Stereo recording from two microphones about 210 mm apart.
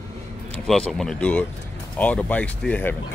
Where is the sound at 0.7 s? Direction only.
Centre (ahead or behind).